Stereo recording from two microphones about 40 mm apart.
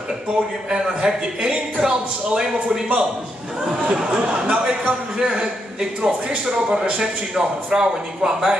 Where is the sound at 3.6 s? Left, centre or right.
Centre.